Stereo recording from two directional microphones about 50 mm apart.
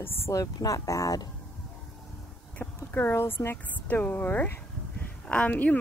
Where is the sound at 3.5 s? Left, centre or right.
Left.